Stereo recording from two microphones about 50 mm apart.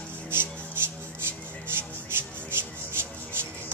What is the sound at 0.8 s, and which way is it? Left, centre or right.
Music, right.